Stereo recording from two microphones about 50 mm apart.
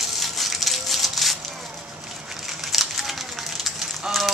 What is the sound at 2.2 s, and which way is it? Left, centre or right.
Fire, centre.